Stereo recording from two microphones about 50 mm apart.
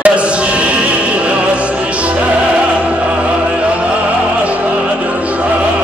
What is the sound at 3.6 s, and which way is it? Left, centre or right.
Music, right.